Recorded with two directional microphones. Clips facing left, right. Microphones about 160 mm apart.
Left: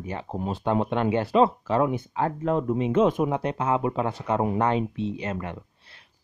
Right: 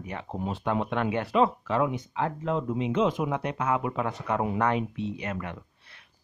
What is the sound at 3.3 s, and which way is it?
Speech, 30° left (ahead or behind).